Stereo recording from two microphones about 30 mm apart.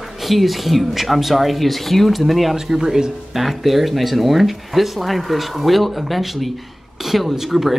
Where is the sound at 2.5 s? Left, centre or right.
Centre.